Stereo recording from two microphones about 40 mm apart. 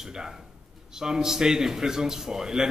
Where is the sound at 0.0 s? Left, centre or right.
Centre.